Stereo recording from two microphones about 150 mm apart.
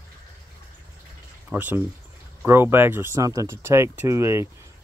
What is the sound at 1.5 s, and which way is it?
Speech, 10° right (ahead or behind).